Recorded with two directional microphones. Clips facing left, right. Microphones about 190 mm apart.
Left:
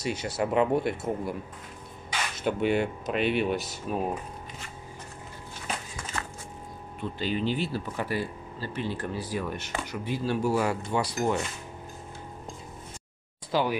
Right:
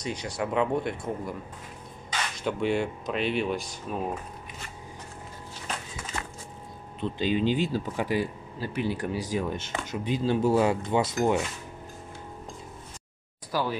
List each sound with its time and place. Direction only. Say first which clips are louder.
0.0 s speech: left 2 dB; 5° left (ahead or behind)
2.4 s speech: left 1 dB; 5° left (ahead or behind)
7.0 s speech: right 4 dB; 15° right (ahead or behind)
13.5 s speech: left 2 dB; 20° left (ahead or behind)